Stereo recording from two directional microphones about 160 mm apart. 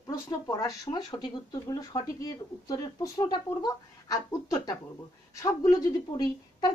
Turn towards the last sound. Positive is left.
turn(degrees=25)  # may be behind; listen again after turning